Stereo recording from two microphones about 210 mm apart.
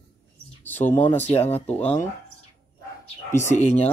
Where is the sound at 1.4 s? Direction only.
30° left (ahead or behind).